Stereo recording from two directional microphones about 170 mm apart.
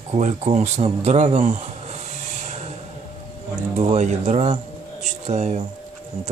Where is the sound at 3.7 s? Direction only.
40° right (ahead or behind).